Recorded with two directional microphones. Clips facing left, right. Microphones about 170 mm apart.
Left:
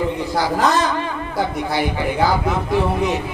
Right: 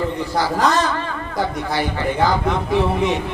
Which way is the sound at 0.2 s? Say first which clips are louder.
Right 1 dB; 15° left (ahead or behind).